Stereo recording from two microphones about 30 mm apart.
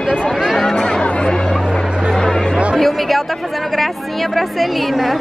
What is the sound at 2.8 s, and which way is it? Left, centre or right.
Speech, centre.